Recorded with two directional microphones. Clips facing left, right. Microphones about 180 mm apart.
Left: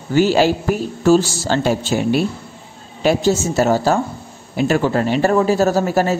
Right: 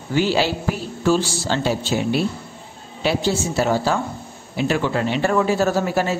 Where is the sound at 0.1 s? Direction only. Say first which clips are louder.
Left 5 dB; 45° left (ahead or behind).